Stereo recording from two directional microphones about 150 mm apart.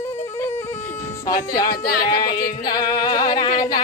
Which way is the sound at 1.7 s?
90° left.